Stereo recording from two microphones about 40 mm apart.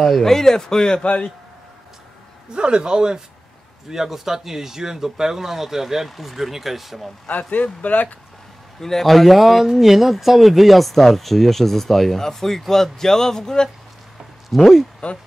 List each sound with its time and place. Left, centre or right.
0.0 s speech: centre
1.0 s speech: left
2.5 s a man's voice: right
3.9 s speech: centre
7.5 s speech: left
8.7 s speech: centre